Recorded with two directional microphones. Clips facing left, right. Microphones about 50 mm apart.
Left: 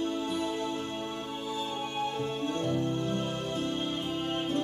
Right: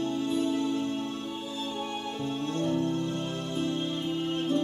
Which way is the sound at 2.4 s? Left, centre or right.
Left.